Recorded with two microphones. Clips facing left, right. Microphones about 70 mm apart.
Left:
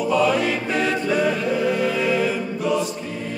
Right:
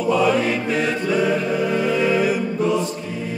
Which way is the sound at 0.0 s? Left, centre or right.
Centre.